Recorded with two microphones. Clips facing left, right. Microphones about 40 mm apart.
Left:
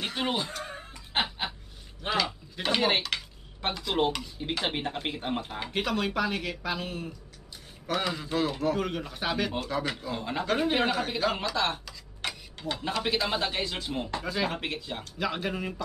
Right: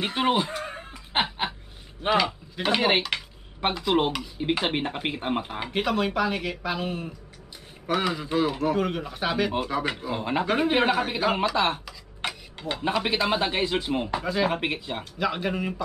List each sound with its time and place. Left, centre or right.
0.0 s a sound: right
2.0 s a man's voice: centre
12.2 s a sound: centre
12.8 s a man's voice: right
14.1 s speech: centre
14.5 s a man's voice: right
15.1 s speech: centre